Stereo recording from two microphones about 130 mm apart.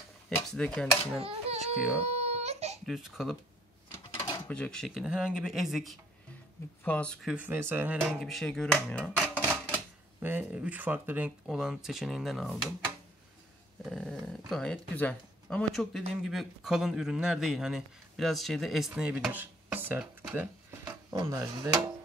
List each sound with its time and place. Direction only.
0.5 s speech: 5° left (ahead or behind)
1.2 s a sound: 50° right (ahead or behind)
1.8 s speech: 10° right (ahead or behind)
2.1 s baby cry: 55° right (ahead or behind)
2.9 s speech: 5° right (ahead or behind)
4.5 s speech: 5° left (ahead or behind)
6.8 s speech: 10° left (ahead or behind)
7.2 s speech: 10° right (ahead or behind)
8.2 s speech: centre (ahead or behind)
9.4 s typewriter: 10° left (ahead or behind)
10.2 s speech: 15° right (ahead or behind)
13.8 s dog: 5° left (ahead or behind)
14.5 s speech: 5° left (ahead or behind); by 20.9 s 15° right (ahead or behind)
21.1 s speech: 30° right (ahead or behind)